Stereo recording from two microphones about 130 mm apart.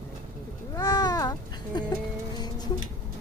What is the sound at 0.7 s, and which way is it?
Baby cry, 35° left (ahead or behind).